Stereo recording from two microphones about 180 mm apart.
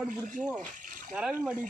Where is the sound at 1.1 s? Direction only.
5° right (ahead or behind).